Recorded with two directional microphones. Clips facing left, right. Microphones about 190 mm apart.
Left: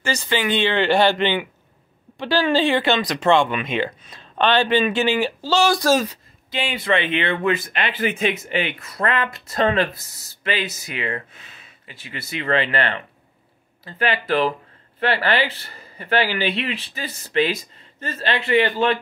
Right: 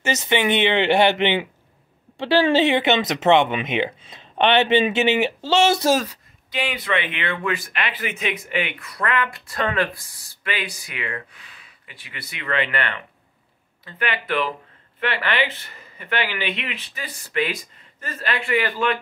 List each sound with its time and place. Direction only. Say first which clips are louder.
0.0 s speech: right 2 dB; 20° right (ahead or behind)
6.0 s speech: left 7 dB; 25° left (ahead or behind)